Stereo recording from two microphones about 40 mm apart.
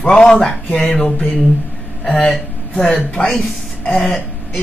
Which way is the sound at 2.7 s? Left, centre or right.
Left.